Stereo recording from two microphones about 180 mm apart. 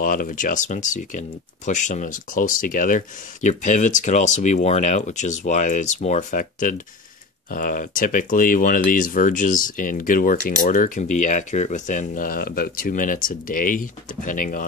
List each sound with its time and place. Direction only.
0.0 s speech: 50° left (ahead or behind)